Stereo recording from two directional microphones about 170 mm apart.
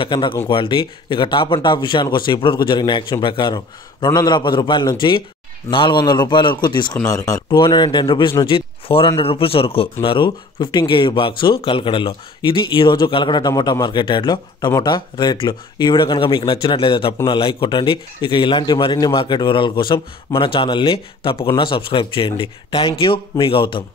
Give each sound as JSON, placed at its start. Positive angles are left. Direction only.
{"t": 0.0, "sound": "speech", "side_deg": 25}